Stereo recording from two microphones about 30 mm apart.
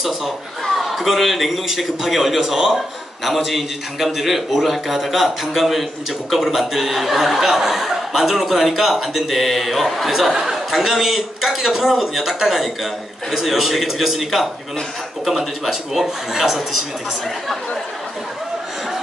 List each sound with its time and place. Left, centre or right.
0.7 s a man's voice: centre